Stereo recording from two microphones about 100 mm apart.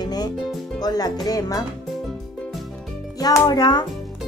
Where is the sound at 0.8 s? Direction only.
40° left (ahead or behind).